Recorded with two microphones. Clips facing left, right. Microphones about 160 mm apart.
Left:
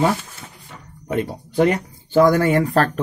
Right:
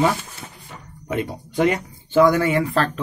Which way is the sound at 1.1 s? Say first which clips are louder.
Left 2 dB; 40° left (ahead or behind).